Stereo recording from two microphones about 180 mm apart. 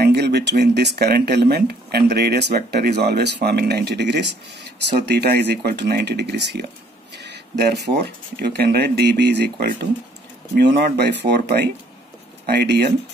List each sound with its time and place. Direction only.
0.0 s speech: 65° right (ahead or behind)